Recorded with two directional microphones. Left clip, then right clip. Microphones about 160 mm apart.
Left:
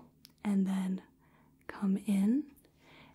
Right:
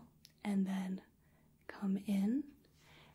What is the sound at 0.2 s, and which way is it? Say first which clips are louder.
Whispering: left 5 dB; 45° left (ahead or behind).